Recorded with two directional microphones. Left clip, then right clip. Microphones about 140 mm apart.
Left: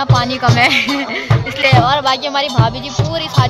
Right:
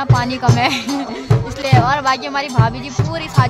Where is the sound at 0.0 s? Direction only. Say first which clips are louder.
Left 3 dB; 10° right (ahead or behind).